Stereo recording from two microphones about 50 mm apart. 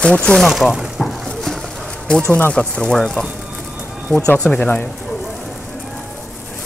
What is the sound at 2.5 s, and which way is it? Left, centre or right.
Speech, centre.